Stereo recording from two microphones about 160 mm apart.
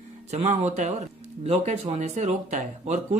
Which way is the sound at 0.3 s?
45° right (ahead or behind).